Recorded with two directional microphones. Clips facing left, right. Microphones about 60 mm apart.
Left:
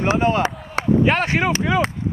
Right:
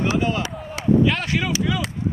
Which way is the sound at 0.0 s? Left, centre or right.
Left.